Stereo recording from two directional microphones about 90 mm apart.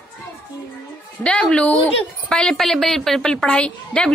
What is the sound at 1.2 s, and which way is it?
A woman's voice, 10° left (ahead or behind).